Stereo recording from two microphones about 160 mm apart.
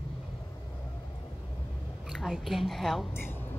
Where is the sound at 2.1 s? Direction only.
Centre (ahead or behind).